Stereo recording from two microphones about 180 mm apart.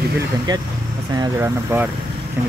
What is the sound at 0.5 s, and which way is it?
Speech, 25° right (ahead or behind).